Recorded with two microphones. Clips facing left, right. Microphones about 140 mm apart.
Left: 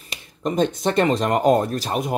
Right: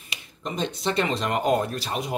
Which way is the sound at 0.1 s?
45° left (ahead or behind).